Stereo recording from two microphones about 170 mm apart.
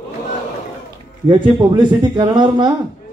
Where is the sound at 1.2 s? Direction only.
25° right (ahead or behind).